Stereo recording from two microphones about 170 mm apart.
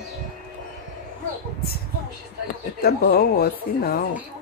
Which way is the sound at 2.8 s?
60° left (ahead or behind).